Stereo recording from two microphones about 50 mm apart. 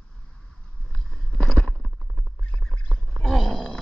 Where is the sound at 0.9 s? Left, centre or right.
Centre.